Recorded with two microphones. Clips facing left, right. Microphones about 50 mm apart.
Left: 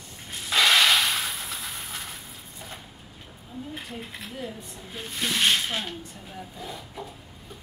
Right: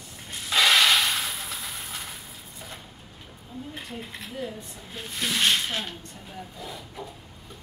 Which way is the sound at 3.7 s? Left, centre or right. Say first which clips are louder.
Even; centre.